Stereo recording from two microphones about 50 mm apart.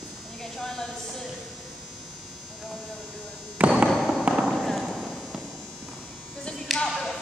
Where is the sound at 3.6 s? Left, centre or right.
Right.